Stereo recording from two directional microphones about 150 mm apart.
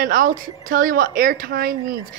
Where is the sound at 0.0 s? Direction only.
65° right (ahead or behind).